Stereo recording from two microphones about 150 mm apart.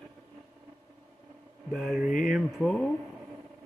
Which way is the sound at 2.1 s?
65° left (ahead or behind).